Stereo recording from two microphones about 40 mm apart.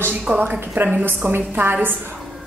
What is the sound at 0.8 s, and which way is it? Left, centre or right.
Speech, right.